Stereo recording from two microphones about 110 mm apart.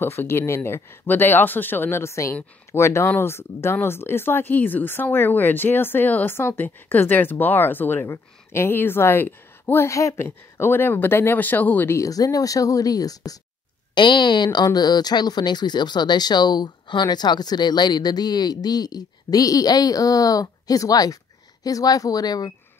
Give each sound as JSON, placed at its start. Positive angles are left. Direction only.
{"t": 0.0, "sound": "speech", "side_deg": 20}
{"t": 12.0, "sound": "speech", "side_deg": 35}
{"t": 13.9, "sound": "speech", "side_deg": 45}